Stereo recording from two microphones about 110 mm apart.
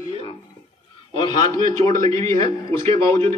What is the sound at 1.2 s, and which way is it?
A man's voice, 40° left (ahead or behind).